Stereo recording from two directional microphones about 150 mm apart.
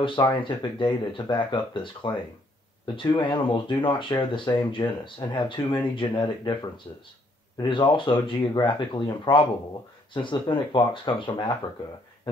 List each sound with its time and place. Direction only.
0.0 s speech: 35° left (ahead or behind)